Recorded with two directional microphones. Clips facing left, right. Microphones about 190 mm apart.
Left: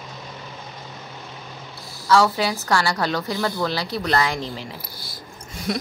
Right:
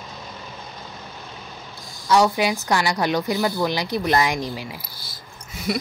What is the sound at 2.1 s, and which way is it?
A woman's voice, 15° right (ahead or behind).